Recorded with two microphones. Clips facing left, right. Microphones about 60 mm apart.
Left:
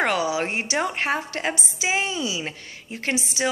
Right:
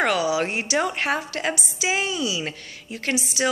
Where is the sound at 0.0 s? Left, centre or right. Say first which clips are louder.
Right 1 dB; left.